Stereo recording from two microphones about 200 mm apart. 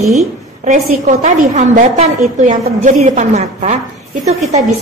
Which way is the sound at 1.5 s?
35° right (ahead or behind).